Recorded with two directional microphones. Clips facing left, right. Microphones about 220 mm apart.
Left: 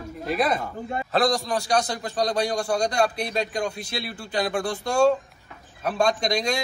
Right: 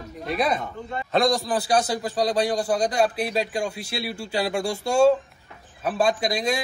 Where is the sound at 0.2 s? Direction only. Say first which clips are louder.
Even; centre (ahead or behind).